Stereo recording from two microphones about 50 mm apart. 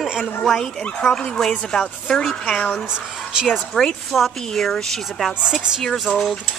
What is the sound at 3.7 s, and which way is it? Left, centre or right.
Speech, centre.